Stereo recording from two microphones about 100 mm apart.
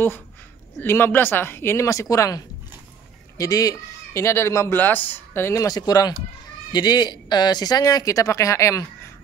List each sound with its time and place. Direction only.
0.7 s a man's voice: 20° left (ahead or behind)
4.7 s speech: 20° left (ahead or behind)